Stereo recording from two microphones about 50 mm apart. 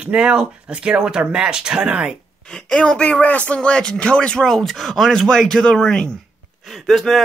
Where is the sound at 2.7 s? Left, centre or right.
Left.